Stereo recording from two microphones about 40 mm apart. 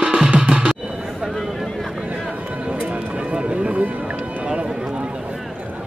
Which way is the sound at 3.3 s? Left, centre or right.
Right.